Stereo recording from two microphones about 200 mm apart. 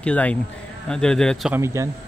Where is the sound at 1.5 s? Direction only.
15° right (ahead or behind).